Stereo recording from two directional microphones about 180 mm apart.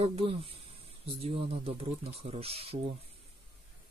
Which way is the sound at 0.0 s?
35° right (ahead or behind).